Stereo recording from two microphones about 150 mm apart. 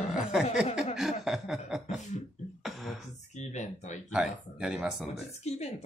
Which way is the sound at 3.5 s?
50° left (ahead or behind).